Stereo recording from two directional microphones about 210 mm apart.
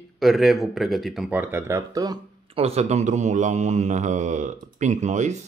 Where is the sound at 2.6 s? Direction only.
30° right (ahead or behind).